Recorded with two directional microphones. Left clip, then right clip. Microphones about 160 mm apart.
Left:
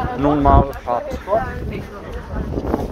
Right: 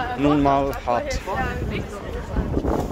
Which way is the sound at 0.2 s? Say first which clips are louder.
Left 4 dB; 30° right (ahead or behind).